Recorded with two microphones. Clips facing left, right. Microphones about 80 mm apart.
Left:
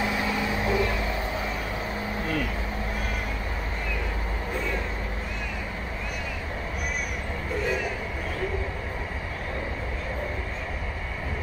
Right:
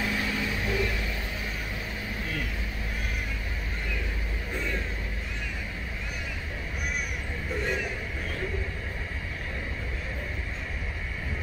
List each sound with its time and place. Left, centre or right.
0.0 s microwave oven: left